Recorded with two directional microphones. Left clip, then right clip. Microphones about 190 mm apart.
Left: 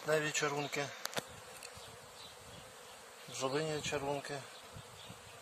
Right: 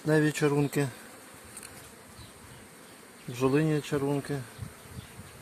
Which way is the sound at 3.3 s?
30° right (ahead or behind).